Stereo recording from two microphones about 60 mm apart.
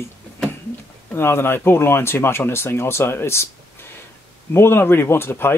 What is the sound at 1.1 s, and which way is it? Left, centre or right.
Speech, left.